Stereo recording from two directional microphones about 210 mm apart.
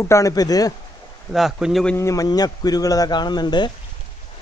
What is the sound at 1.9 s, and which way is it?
Speech, 15° left (ahead or behind).